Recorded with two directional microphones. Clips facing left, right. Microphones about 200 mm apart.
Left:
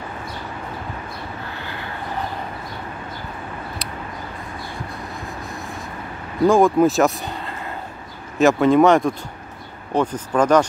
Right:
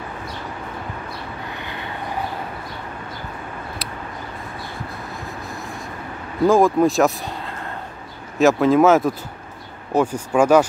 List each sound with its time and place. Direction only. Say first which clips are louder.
1.6 s vehicle: even; 20° right (ahead or behind)
6.4 s speech: left 1 dB; centre (ahead or behind)